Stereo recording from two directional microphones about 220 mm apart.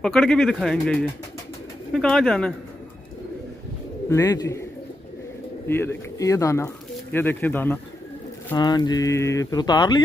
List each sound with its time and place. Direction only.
0.0 s speech: centre (ahead or behind)
4.1 s speech: 15° left (ahead or behind)
5.7 s speech: 10° left (ahead or behind)